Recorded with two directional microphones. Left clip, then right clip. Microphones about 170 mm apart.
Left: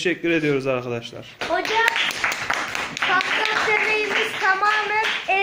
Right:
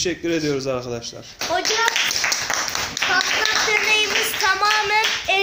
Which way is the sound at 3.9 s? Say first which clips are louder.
Right 2 dB; 60° right (ahead or behind).